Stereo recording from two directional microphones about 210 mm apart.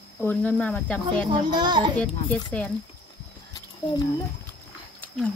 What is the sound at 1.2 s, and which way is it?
Speech, 20° right (ahead or behind).